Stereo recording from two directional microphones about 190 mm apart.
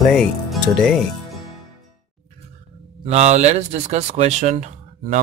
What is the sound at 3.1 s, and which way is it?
Speech, 35° right (ahead or behind).